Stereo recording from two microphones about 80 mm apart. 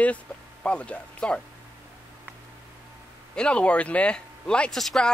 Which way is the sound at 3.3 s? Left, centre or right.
Centre.